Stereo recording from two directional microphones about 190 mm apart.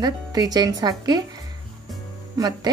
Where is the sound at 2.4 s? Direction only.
20° right (ahead or behind).